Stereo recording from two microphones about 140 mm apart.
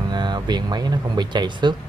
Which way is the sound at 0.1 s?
30° right (ahead or behind).